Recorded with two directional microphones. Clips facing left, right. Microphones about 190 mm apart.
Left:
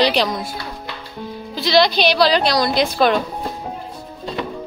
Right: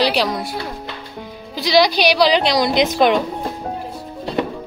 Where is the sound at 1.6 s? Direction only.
10° right (ahead or behind).